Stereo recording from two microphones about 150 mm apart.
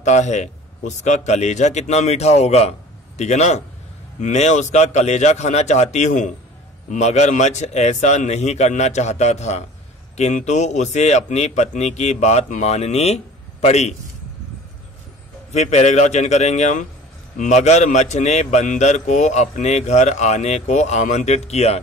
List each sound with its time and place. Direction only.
0.0 s a man's voice: 50° left (ahead or behind)
15.5 s a man's voice: 50° left (ahead or behind)